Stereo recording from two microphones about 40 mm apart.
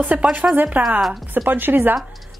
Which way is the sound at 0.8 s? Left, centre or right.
Right.